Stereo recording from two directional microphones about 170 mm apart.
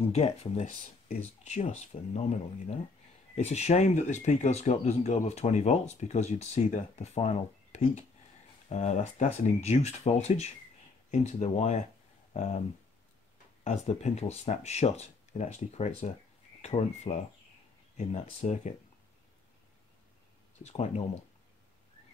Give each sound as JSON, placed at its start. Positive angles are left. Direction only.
{"t": 0.1, "sound": "speech", "side_deg": 40}
{"t": 13.7, "sound": "speech", "side_deg": 40}
{"t": 20.6, "sound": "speech", "side_deg": 40}